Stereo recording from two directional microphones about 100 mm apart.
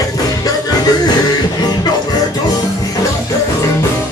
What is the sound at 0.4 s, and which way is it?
Music, 40° left (ahead or behind).